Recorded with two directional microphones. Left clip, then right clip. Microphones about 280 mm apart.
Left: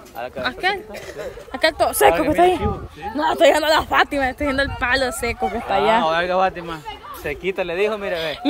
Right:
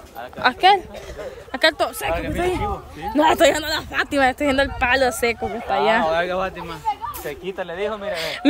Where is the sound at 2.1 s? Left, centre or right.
Left.